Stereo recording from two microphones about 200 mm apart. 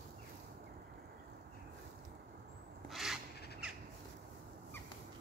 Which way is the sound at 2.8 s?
Centre (ahead or behind).